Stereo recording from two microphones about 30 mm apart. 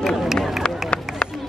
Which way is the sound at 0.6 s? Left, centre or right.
Left.